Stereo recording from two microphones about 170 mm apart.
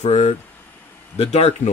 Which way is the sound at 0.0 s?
40° left (ahead or behind).